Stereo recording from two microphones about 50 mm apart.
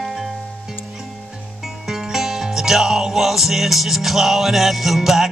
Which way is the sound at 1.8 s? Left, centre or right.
Centre.